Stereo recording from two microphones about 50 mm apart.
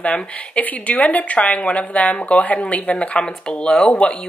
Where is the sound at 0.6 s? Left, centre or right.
Left.